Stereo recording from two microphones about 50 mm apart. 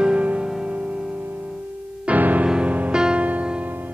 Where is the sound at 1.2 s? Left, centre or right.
Right.